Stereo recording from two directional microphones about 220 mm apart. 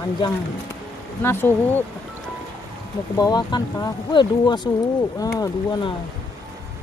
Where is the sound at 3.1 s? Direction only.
20° left (ahead or behind).